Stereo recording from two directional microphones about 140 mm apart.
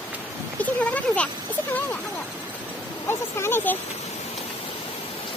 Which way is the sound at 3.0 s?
15° left (ahead or behind).